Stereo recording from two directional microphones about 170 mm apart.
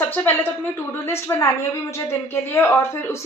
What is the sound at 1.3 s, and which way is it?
A woman's voice, 20° left (ahead or behind).